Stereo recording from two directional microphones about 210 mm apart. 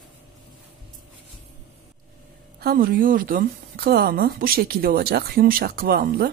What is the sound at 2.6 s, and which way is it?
Speech, 45° right (ahead or behind).